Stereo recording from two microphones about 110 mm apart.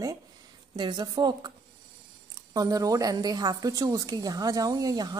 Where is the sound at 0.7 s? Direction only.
45° right (ahead or behind).